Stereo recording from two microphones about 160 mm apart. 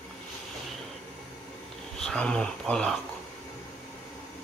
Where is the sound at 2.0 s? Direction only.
5° left (ahead or behind).